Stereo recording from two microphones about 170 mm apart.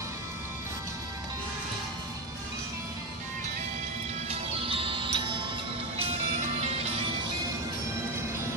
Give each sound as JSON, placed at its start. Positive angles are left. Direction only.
{"t": 4.3, "sound": "music", "side_deg": -35}